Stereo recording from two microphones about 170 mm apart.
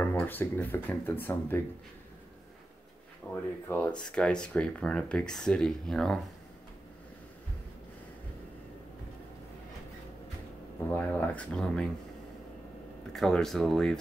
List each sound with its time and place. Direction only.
0.0 s speech: 10° left (ahead or behind)
3.3 s speech: 10° left (ahead or behind)
10.9 s speech: 10° left (ahead or behind)
13.1 s speech: centre (ahead or behind)